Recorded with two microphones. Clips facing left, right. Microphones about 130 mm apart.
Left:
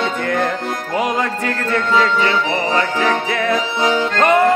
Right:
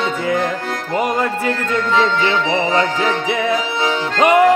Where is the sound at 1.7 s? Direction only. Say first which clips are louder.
Left 1 dB; 20° right (ahead or behind).